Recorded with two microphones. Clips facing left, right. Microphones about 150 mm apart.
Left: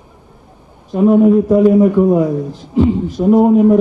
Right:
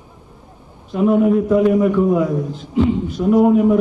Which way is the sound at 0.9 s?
35° left (ahead or behind).